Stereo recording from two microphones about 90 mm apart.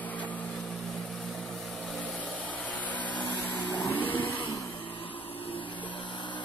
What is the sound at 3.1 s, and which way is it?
Vehicle, 20° left (ahead or behind).